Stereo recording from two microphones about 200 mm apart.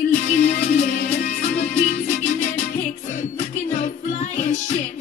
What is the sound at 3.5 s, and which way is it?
Music, 35° left (ahead or behind).